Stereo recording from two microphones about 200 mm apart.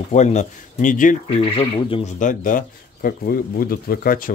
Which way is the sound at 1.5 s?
30° left (ahead or behind).